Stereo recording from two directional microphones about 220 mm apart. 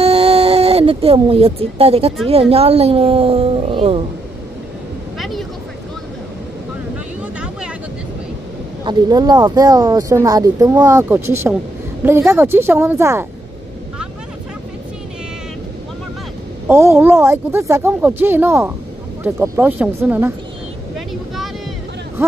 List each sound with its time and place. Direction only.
0.0 s a sound: 25° right (ahead or behind)
2.5 s a woman's voice: 25° right (ahead or behind)
8.8 s speech: 20° right (ahead or behind)
16.6 s speech: 10° right (ahead or behind)